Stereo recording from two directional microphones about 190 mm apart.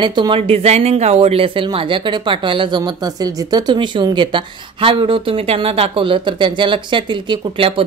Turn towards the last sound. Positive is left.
turn(degrees=-30)  # may be behind; listen again after turning